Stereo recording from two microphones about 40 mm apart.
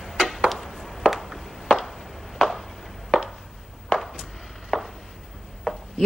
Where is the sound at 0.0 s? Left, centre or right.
Centre.